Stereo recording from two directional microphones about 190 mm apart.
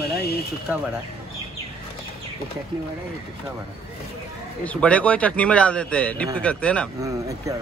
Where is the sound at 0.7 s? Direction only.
5° right (ahead or behind).